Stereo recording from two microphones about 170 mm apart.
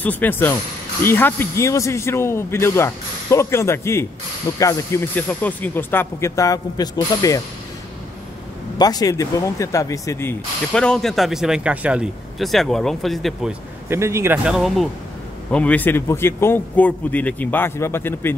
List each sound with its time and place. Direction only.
0.0 s speech: 10° left (ahead or behind)
8.7 s speech: 20° left (ahead or behind)
10.7 s speech: 5° left (ahead or behind)
13.8 s a man's voice: 15° right (ahead or behind)
14.4 s speech: centre (ahead or behind)
15.5 s speech: 10° left (ahead or behind)